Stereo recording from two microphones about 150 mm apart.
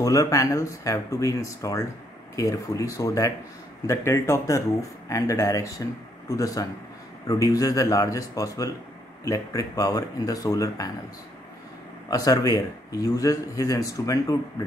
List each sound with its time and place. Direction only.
0.0 s speech: 20° left (ahead or behind)
12.1 s speech: 25° left (ahead or behind)